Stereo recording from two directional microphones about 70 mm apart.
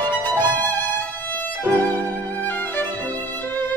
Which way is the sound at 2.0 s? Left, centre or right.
Left.